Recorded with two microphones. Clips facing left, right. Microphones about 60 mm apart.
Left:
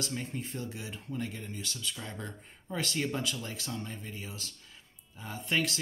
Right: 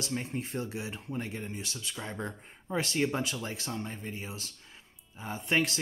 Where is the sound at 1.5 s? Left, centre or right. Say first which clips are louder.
Even; right.